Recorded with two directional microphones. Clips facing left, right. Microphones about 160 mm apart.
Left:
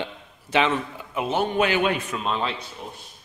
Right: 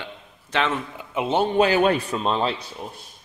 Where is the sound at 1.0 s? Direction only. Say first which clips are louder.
Right 5 dB; 20° right (ahead or behind).